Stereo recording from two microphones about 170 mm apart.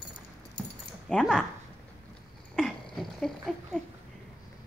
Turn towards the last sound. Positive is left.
turn(degrees=0)  # may be behind; listen again after turning